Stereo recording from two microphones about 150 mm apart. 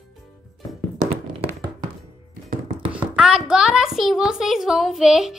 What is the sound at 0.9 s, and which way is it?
Tap, 55° right (ahead or behind).